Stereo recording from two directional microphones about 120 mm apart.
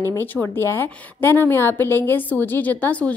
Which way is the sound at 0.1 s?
20° left (ahead or behind).